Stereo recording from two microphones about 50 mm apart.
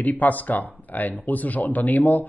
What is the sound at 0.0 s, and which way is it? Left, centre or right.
A man's voice, left.